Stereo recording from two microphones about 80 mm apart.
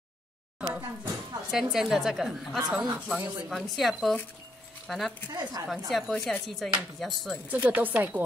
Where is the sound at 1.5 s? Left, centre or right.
Centre.